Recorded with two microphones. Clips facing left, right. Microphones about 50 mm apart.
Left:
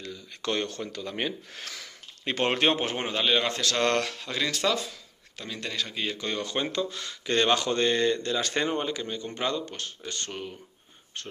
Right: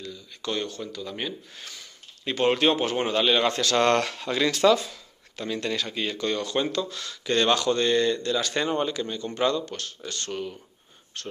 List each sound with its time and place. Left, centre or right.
0.0 s speech: left
1.5 s speech: left
2.2 s speech: left
3.0 s speech: centre
6.1 s speech: centre
8.6 s speech: centre